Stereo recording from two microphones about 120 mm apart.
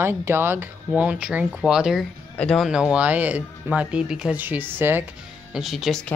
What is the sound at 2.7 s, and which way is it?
Speech, 5° right (ahead or behind).